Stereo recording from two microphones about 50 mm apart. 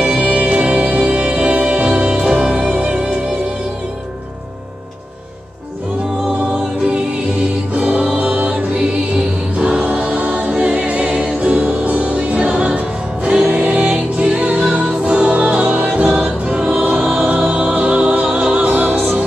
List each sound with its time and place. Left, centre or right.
0.0 s music: centre
6.2 s music: centre
7.7 s music: right
8.4 s music: right
16.2 s choir: centre
17.0 s music: centre
17.5 s music: right
18.7 s music: right